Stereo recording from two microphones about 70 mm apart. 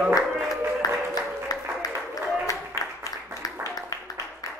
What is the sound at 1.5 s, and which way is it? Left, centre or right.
Applause, left.